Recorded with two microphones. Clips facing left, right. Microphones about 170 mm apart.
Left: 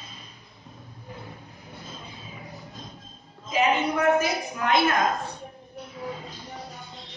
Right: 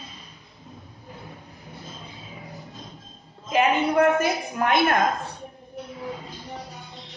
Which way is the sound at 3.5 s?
55° right (ahead or behind).